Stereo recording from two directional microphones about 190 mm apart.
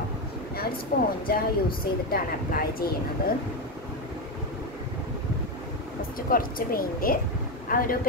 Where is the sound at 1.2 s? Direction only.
50° left (ahead or behind).